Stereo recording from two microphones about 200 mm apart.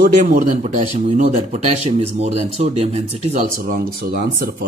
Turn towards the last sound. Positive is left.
turn(degrees=-50)  # may be behind; listen again after turning